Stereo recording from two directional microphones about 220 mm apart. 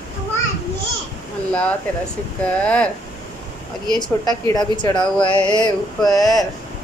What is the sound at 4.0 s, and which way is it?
Speech, 15° left (ahead or behind).